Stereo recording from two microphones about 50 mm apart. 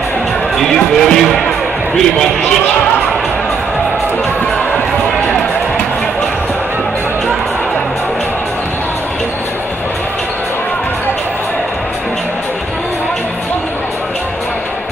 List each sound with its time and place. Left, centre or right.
0.6 s speech: centre